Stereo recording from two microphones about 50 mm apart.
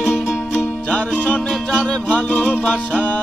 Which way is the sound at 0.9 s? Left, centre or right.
Left.